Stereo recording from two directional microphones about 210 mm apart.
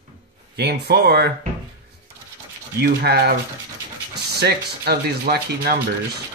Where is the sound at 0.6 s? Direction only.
50° right (ahead or behind).